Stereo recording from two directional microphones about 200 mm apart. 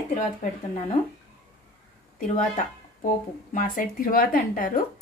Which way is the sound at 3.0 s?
40° left (ahead or behind).